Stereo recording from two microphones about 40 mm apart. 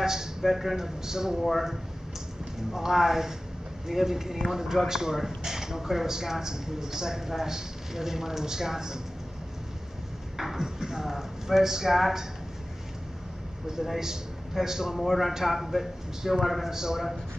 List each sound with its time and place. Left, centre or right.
0.0 s a sound: centre
0.5 s speech: centre
1.4 s a man's voice: centre
2.7 s speech: centre
10.3 s speech: centre
13.7 s a man's voice: centre
15.0 s a man's voice: centre